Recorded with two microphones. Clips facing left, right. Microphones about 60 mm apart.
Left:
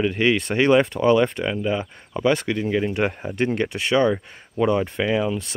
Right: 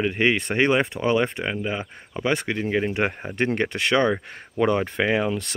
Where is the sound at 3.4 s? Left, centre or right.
Right.